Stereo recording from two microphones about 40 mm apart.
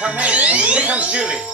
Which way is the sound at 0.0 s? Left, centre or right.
Right.